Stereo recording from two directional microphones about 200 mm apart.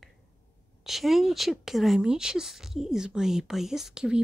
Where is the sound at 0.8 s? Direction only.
Centre (ahead or behind).